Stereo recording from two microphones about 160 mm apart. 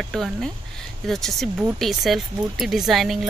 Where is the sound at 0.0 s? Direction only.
Centre (ahead or behind).